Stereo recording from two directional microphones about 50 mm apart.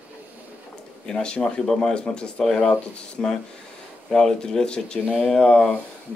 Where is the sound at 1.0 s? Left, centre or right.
Centre.